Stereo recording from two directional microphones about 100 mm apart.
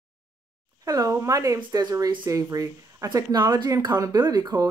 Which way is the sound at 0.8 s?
35° right (ahead or behind).